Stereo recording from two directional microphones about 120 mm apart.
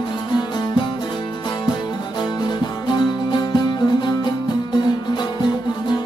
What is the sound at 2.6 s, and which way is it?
Music, 40° left (ahead or behind).